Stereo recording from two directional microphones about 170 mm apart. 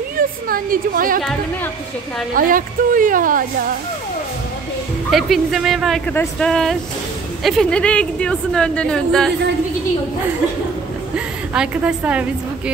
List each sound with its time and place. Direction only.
0.2 s a woman's voice: 55° right (ahead or behind)
2.3 s speech: 55° right (ahead or behind)
5.1 s a woman's voice: centre (ahead or behind)
11.1 s a woman's voice: 5° right (ahead or behind)